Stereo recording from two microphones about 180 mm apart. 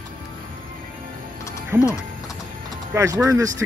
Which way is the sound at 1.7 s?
15° right (ahead or behind).